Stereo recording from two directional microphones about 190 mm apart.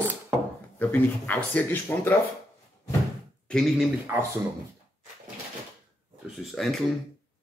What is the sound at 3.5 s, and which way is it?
Speech, centre (ahead or behind).